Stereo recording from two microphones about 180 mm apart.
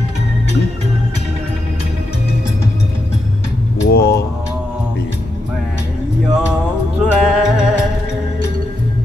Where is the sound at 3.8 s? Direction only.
60° left (ahead or behind).